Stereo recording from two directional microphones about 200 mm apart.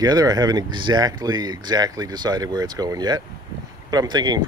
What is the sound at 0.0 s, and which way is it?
Speech, 20° right (ahead or behind).